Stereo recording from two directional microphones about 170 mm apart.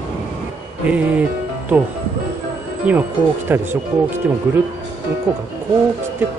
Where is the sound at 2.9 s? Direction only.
10° right (ahead or behind).